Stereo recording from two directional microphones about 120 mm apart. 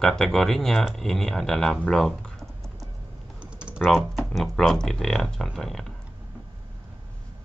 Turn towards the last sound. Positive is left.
turn(degrees=5)  # may be behind; listen again after turning